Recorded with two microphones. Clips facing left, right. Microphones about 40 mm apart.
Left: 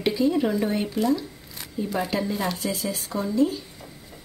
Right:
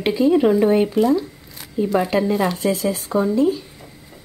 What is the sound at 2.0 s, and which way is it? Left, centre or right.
Speech, right.